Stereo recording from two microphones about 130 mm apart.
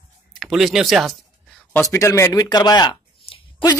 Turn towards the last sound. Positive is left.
turn(degrees=35)  # may be behind; listen again after turning